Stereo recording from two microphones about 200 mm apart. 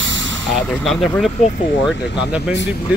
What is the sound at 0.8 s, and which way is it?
Speech, centre (ahead or behind).